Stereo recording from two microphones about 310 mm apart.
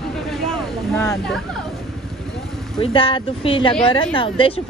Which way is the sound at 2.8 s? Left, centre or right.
Centre.